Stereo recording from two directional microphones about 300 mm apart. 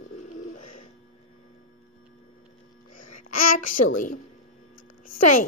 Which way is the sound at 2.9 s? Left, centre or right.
Left.